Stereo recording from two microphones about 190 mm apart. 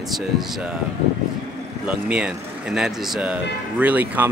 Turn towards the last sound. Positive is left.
turn(degrees=-10)  # may be behind; listen again after turning